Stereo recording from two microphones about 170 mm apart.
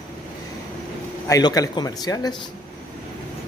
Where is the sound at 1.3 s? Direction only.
20° left (ahead or behind).